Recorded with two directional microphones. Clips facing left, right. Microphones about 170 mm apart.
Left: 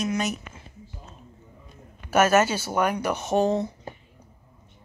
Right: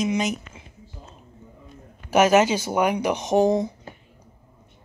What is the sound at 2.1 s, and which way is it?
Speech, 15° right (ahead or behind).